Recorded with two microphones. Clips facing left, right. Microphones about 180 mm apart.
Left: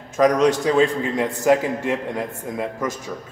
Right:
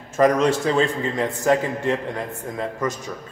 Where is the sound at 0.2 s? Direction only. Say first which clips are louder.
Left 1 dB; 5° right (ahead or behind).